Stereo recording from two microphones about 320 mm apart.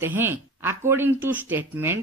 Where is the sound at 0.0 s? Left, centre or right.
Centre.